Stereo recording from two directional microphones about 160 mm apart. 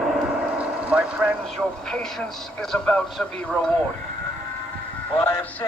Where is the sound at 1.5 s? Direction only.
5° left (ahead or behind).